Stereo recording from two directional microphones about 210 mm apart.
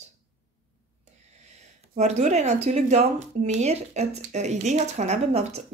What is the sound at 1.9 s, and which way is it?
Speech, 30° right (ahead or behind).